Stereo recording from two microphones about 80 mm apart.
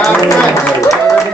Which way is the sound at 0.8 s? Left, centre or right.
Left.